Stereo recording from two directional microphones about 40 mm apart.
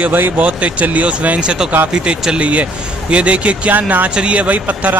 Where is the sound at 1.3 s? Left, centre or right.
Right.